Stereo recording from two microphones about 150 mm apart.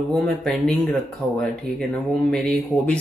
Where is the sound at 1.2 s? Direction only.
20° left (ahead or behind).